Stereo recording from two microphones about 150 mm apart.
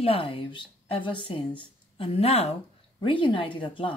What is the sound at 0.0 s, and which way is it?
A woman's voice, 40° left (ahead or behind).